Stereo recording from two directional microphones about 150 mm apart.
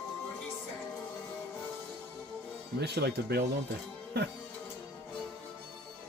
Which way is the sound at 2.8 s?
90° right.